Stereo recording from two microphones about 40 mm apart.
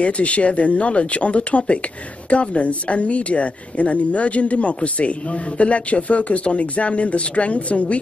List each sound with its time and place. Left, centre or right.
0.0 s a woman's voice: left